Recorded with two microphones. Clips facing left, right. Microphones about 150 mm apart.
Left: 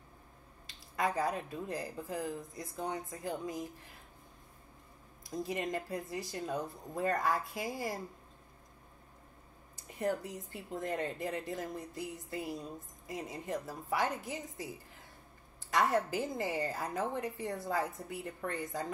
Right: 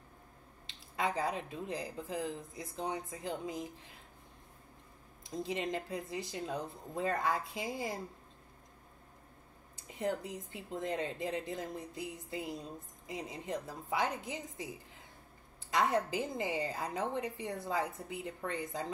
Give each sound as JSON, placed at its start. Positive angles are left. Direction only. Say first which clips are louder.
{"t": 0.7, "sound": "a woman's voice", "louder": "left 1 dB", "side_deg": -20}
{"t": 5.2, "sound": "a woman's voice", "louder": "even", "side_deg": -25}
{"t": 9.8, "sound": "a woman's voice", "louder": "left 1 dB", "side_deg": -20}
{"t": 15.7, "sound": "a woman's voice", "louder": "left 1 dB", "side_deg": -20}